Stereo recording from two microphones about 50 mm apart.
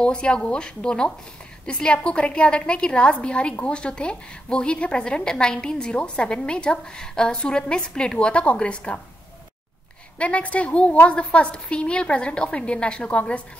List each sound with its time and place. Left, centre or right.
0.0 s a woman's voice: centre
10.1 s a woman's voice: left